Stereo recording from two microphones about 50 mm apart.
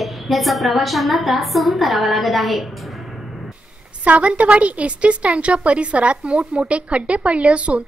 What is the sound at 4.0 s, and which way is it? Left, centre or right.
A woman's voice, right.